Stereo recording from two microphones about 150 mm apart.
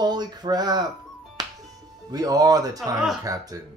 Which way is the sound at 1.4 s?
25° right (ahead or behind).